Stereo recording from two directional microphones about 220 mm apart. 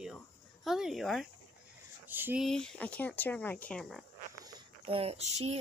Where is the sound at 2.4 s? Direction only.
5° left (ahead or behind).